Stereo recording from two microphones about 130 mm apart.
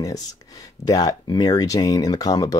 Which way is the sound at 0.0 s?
30° left (ahead or behind).